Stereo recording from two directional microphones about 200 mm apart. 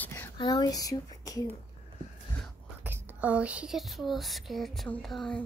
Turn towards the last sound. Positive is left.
turn(degrees=0)  # may be behind; listen again after turning